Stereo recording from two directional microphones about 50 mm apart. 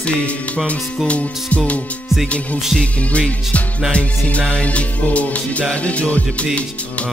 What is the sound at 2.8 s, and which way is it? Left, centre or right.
Music, left.